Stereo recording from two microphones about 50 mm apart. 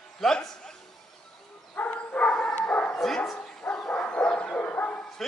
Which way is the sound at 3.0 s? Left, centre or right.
Centre.